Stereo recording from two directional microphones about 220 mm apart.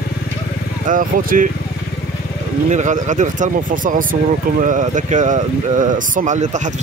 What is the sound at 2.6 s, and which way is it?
Speech, 35° right (ahead or behind).